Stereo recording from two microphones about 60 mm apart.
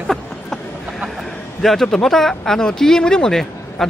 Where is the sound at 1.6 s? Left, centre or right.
Centre.